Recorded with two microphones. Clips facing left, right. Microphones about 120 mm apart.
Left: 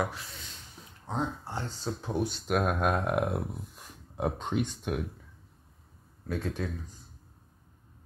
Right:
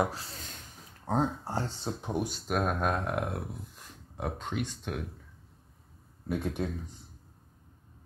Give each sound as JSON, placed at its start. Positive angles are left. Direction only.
{"t": 0.1, "sound": "speech", "side_deg": -35}
{"t": 1.8, "sound": "speech", "side_deg": -20}
{"t": 2.3, "sound": "speech", "side_deg": 5}
{"t": 6.2, "sound": "speech", "side_deg": -15}